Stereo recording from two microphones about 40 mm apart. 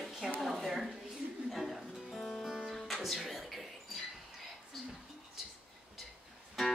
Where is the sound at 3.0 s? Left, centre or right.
Centre.